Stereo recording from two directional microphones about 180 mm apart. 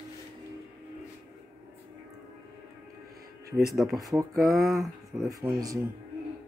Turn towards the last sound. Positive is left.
turn(degrees=-20)  # may be behind; listen again after turning